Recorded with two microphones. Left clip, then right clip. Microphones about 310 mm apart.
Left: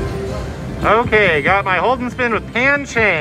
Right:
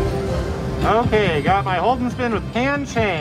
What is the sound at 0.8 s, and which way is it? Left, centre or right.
Speech, centre.